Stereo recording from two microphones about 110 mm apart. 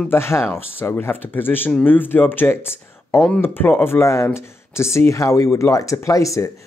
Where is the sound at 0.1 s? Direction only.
25° left (ahead or behind).